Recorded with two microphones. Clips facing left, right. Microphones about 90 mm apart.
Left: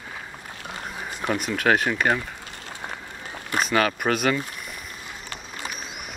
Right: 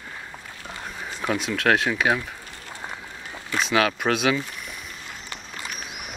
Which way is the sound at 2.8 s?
10° left (ahead or behind).